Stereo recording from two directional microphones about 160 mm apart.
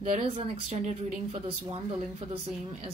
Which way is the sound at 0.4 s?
40° right (ahead or behind).